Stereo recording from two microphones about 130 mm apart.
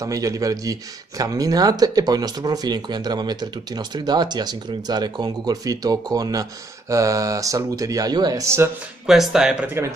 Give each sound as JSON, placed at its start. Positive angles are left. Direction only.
{"t": 0.0, "sound": "speech", "side_deg": -25}
{"t": 9.0, "sound": "speech", "side_deg": -5}